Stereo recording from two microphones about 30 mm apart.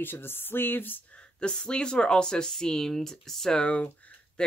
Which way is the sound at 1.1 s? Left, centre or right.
Left.